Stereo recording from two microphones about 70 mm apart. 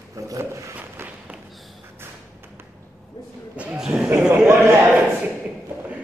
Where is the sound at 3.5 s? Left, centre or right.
Centre.